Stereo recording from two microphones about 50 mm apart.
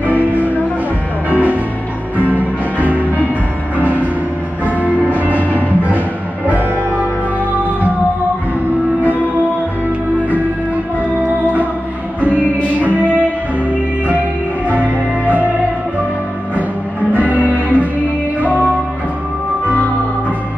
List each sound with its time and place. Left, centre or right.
0.0 s music: right
4.6 s music: right
12.8 s music: right
17.3 s music: right